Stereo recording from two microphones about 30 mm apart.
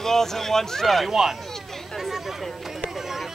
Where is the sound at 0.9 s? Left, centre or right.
Centre.